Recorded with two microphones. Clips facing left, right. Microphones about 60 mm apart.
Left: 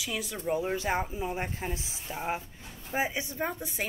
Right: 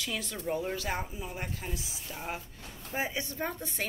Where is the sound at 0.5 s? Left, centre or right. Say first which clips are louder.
Left 5 dB; left.